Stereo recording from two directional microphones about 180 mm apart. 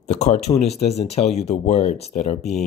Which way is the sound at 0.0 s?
40° left (ahead or behind).